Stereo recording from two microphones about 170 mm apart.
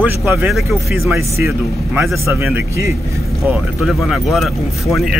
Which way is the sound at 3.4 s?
Centre (ahead or behind).